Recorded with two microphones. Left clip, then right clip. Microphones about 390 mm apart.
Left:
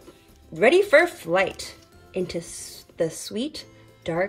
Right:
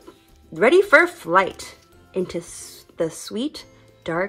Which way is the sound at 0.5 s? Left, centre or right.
Centre.